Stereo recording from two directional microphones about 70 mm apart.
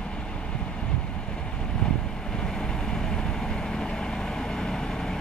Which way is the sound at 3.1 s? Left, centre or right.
Centre.